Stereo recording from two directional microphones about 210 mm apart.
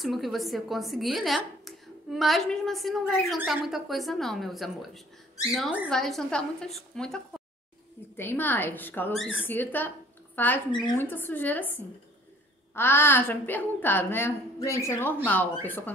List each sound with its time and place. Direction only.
0.0 s a woman's voice: centre (ahead or behind)
10.7 s speech: 20° left (ahead or behind)
11.0 s a woman's voice: 10° left (ahead or behind)